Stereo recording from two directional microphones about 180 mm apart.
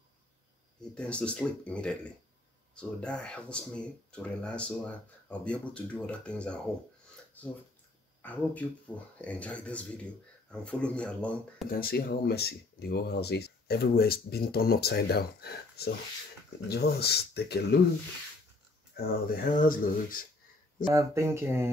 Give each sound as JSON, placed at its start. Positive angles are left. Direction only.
{"t": 0.9, "sound": "speech", "side_deg": 5}
{"t": 11.7, "sound": "speech", "side_deg": 55}
{"t": 18.9, "sound": "speech", "side_deg": 55}
{"t": 20.9, "sound": "speech", "side_deg": -15}